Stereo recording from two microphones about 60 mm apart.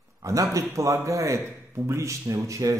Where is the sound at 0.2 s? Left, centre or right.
Right.